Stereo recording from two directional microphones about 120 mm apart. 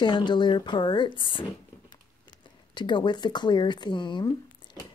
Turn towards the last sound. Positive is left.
turn(degrees=40)  # may be behind; listen again after turning